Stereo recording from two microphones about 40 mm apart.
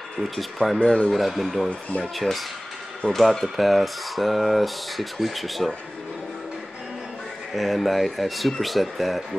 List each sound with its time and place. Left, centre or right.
0.2 s speech: centre
0.7 s speech: left
1.1 s speech: centre
1.7 s speech: left
3.1 s speech: centre
7.5 s speech: centre